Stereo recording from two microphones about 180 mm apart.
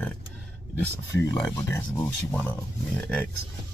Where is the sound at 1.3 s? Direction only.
10° left (ahead or behind).